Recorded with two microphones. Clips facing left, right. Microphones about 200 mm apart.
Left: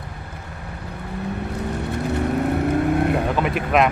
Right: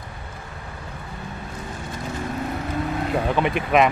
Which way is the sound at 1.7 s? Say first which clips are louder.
Left 7 dB; 65° left (ahead or behind).